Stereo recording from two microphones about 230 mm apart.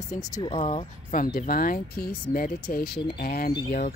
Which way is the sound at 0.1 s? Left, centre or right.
Centre.